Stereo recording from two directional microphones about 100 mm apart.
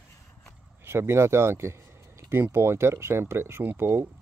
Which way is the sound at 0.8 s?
25° right (ahead or behind).